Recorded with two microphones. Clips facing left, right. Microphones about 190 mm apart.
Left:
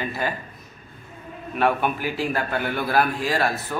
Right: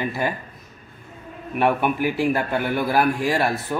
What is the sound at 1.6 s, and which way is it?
Speech, 15° right (ahead or behind).